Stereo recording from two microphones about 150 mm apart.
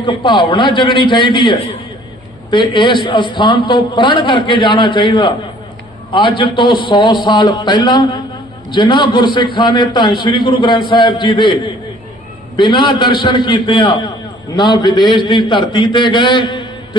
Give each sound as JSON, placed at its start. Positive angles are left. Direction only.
{"t": 0.0, "sound": "a man's voice", "side_deg": 30}